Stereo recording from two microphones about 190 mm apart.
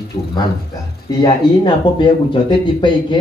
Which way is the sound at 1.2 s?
25° left (ahead or behind).